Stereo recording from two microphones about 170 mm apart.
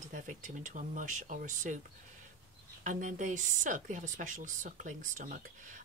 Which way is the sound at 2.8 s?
50° right (ahead or behind).